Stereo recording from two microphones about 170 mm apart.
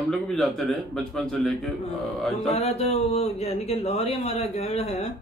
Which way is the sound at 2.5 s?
35° left (ahead or behind).